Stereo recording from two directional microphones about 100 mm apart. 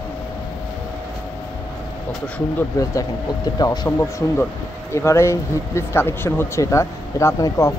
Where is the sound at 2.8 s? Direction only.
35° left (ahead or behind).